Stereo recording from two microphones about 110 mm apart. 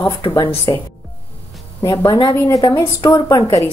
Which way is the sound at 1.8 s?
30° left (ahead or behind).